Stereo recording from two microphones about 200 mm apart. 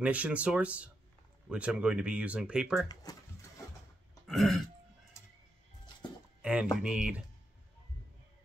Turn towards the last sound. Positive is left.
turn(degrees=-5)  # may be behind; listen again after turning